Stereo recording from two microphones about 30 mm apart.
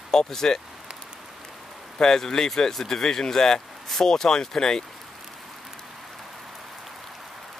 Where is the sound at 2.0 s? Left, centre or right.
Left.